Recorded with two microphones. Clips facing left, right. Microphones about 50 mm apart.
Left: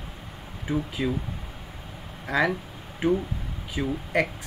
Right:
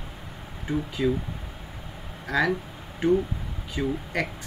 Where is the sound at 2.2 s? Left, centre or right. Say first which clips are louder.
Even; centre.